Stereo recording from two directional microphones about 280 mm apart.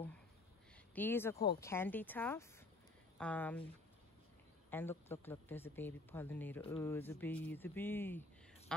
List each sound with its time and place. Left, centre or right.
0.9 s speech: centre
4.6 s speech: centre